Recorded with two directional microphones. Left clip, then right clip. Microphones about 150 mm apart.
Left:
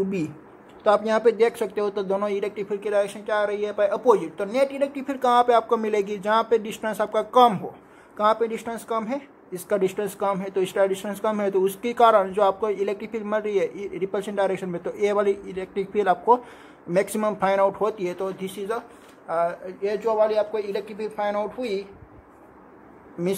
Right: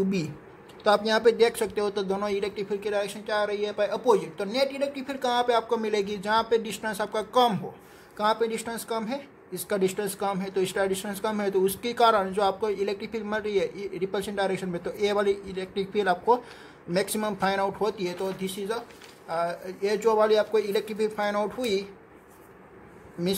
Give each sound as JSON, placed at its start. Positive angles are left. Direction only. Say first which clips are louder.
{"t": 0.8, "sound": "speech", "louder": "left 2 dB", "side_deg": -10}
{"t": 19.6, "sound": "speech", "louder": "even", "side_deg": -30}